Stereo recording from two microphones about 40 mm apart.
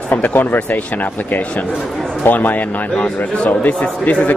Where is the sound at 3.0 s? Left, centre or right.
Left.